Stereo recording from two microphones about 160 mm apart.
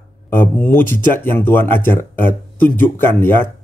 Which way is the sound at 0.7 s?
10° left (ahead or behind).